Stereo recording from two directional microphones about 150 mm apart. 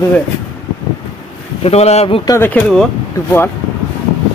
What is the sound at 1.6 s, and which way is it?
Speech, 45° left (ahead or behind).